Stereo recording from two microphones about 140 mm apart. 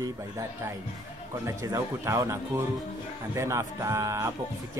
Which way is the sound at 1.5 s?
20° right (ahead or behind).